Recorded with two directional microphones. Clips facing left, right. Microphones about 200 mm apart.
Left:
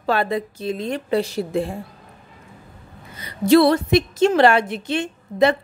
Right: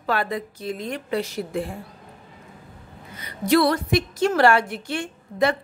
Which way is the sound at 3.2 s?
25° left (ahead or behind).